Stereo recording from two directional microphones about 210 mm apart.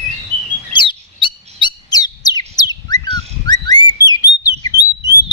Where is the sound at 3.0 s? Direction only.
20° left (ahead or behind).